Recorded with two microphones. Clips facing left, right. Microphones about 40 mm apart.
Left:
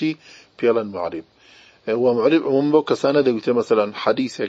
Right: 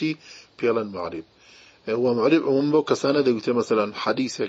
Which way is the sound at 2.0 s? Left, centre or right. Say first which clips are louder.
Left 3 dB; left.